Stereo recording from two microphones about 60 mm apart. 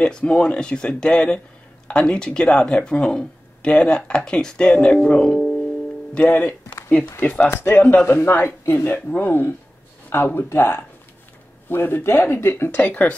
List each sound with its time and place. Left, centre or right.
0.0 s speech: centre
5.0 s music: centre
6.1 s speech: left
12.7 s speech: left